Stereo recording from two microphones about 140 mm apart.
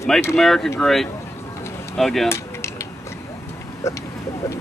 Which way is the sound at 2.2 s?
20° left (ahead or behind).